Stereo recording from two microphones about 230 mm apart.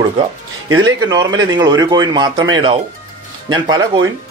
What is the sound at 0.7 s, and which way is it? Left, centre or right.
Speech, centre.